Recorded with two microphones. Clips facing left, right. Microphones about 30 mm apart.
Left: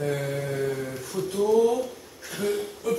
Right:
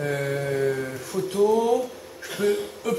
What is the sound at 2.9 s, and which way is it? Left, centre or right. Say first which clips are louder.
Music: right 1 dB; right.